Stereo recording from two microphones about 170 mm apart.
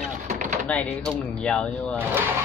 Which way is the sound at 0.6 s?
5° left (ahead or behind).